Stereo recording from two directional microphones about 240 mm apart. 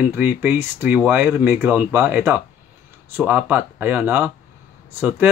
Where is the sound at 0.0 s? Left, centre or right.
Centre.